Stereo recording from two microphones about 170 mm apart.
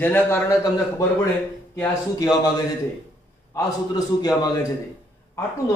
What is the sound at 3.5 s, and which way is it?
A man's voice, 20° left (ahead or behind).